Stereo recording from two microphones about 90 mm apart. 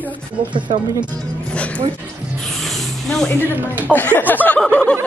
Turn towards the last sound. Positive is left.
turn(degrees=20)  # may be behind; listen again after turning